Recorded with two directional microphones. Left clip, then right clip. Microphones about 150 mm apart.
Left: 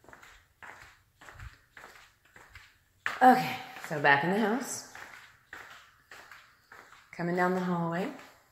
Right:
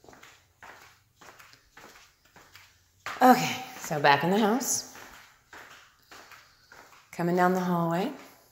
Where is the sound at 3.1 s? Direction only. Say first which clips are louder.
Right 1 dB; 25° right (ahead or behind).